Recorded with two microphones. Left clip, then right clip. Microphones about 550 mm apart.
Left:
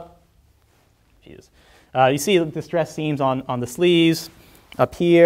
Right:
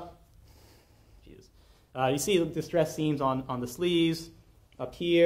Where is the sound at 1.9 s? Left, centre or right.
Left.